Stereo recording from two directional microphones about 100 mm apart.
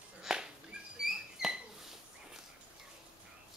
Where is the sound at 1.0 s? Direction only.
5° right (ahead or behind).